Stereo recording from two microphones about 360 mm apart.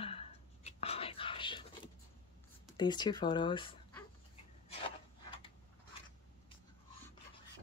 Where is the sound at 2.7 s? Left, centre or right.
Centre.